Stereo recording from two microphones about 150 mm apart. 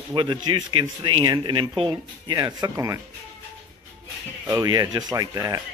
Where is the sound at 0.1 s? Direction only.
30° right (ahead or behind).